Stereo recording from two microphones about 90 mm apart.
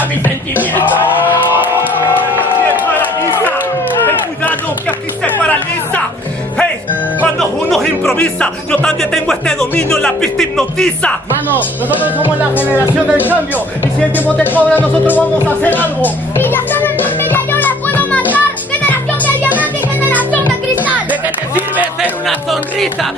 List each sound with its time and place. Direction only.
2.7 s run: 20° left (ahead or behind)
5.2 s music: 15° left (ahead or behind)
7.3 s speech: 5° left (ahead or behind); by 12.8 s 20° left (ahead or behind)
14.1 s music: 20° left (ahead or behind)
20.2 s music: 20° right (ahead or behind)